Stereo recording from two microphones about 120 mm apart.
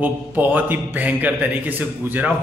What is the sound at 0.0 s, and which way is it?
A man's voice, 15° right (ahead or behind).